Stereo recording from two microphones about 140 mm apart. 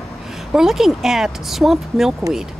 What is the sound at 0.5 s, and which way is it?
Speech, centre (ahead or behind).